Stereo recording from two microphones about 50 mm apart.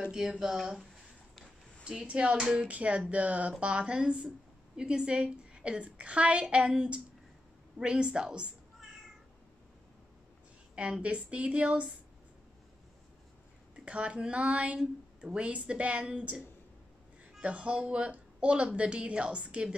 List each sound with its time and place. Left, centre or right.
0.4 s speech: centre
1.9 s a woman's voice: centre
10.8 s a woman's voice: right
13.7 s a woman's voice: right